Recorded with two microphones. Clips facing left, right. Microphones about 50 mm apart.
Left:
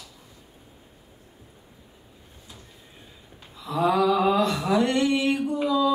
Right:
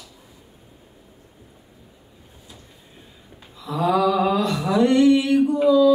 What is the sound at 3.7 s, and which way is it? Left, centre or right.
Mantra, centre.